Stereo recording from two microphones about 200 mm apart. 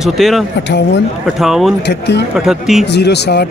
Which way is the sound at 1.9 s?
60° left (ahead or behind).